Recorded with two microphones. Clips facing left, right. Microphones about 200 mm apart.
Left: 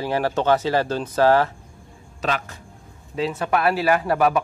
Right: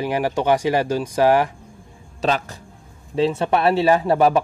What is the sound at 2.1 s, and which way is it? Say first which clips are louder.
A man's voice: right 4 dB; 30° right (ahead or behind).